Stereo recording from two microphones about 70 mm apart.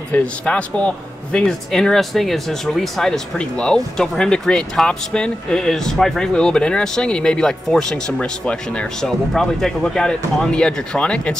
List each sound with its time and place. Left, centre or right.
0.1 s speech: centre
9.3 s speech: centre